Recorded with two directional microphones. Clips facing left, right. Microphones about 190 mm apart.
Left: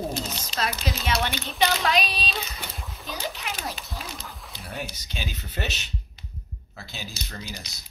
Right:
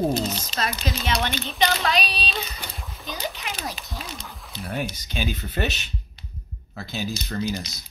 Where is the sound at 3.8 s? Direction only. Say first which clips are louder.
Right 1 dB; centre (ahead or behind).